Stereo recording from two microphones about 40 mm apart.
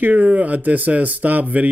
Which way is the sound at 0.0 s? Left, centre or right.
Right.